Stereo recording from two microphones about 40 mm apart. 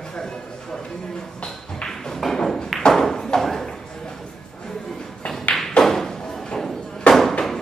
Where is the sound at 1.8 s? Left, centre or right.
Centre.